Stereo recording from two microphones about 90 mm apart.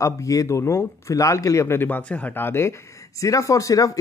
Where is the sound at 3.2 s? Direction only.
35° left (ahead or behind).